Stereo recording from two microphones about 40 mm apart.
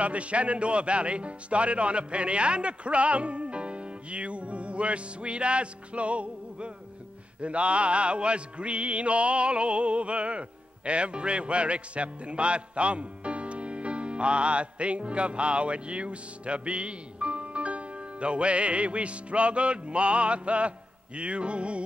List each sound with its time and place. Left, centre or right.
0.0 s speech: right
10.9 s music: right